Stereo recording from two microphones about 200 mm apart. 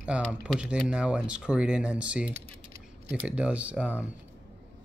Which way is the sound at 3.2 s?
5° right (ahead or behind).